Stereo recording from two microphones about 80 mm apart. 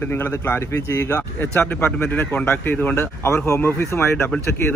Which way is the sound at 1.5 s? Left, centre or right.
Left.